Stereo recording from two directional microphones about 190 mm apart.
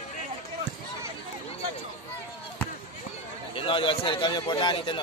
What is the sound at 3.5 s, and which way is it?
A man's voice, 25° left (ahead or behind).